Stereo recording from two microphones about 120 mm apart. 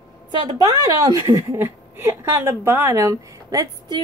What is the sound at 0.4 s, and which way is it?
A woman's voice, 35° right (ahead or behind).